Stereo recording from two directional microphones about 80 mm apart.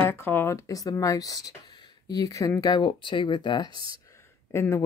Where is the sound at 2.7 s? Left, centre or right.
Left.